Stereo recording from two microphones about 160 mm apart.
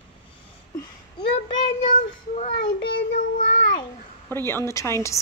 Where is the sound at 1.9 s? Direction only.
45° left (ahead or behind).